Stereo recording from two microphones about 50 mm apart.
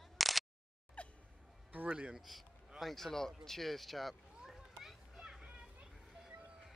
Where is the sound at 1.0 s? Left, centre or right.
Left.